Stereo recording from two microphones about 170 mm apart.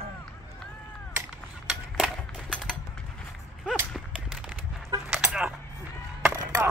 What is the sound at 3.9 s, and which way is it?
Horse, 5° right (ahead or behind).